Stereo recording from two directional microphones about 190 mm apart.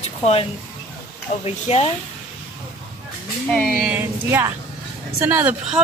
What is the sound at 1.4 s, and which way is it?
Speech, 30° left (ahead or behind).